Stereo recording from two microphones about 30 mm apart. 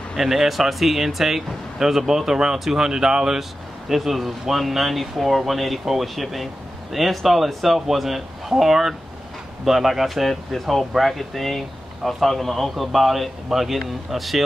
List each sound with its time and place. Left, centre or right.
0.2 s speech: centre
3.9 s speech: centre